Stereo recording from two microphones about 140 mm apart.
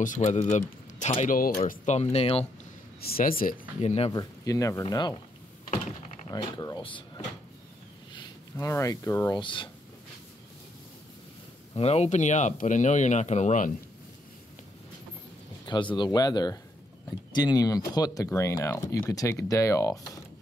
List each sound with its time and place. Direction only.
0.0 s a man's voice: 60° left (ahead or behind)
1.2 s speech: 80° left
1.7 s speech: 55° left (ahead or behind)
3.0 s speech: 90° left
3.8 s speech: 45° left (ahead or behind)
4.1 s speech: 25° left (ahead or behind)
5.7 s typing: 55° left (ahead or behind)
6.2 s speech: 30° left (ahead or behind)
8.5 s speech: 20° left (ahead or behind)
9.3 s speech: 35° left (ahead or behind)
11.7 s speech: 45° left (ahead or behind)
15.6 s speech: 35° left (ahead or behind)